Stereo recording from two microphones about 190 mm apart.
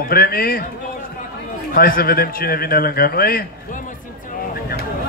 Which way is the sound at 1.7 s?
50° left (ahead or behind).